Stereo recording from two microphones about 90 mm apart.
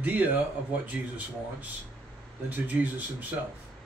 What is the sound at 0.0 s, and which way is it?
A man's voice, 20° right (ahead or behind).